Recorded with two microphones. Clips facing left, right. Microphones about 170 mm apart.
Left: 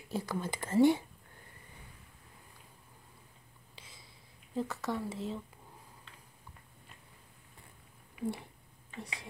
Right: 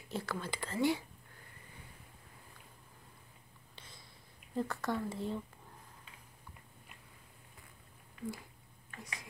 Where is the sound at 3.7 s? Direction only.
5° left (ahead or behind).